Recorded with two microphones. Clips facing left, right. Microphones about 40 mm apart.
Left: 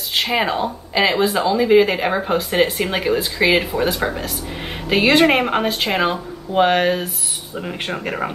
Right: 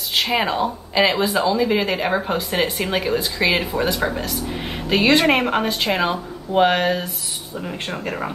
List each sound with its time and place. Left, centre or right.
0.4 s speech: centre
7.5 s speech: left